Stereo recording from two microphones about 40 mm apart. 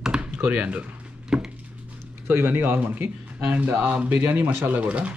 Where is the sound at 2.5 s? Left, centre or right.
Right.